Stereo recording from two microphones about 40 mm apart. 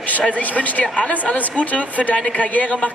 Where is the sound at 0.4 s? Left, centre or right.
Left.